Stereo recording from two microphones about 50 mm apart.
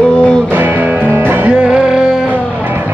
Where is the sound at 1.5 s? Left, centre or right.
Centre.